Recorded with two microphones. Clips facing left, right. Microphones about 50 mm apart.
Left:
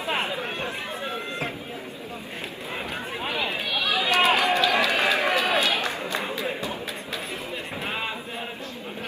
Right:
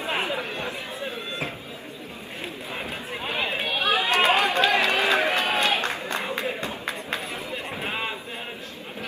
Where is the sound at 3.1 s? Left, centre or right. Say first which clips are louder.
Right 1 dB; right.